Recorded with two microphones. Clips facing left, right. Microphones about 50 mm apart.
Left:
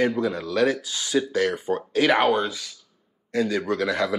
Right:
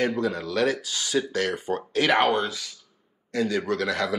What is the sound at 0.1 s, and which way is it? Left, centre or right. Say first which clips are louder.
Speech: left 1 dB; centre.